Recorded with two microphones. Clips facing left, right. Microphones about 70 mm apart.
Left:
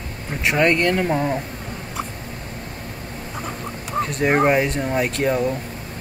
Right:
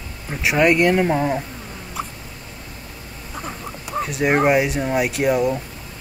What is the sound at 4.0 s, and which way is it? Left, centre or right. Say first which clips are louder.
Speech: even; centre.